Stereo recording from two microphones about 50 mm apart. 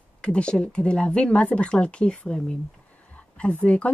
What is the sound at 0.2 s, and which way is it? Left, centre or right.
Speech, left.